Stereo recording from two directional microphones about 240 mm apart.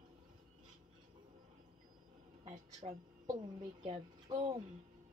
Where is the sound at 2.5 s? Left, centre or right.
Right.